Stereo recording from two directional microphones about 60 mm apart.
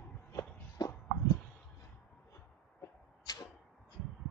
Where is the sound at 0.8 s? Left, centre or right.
Left.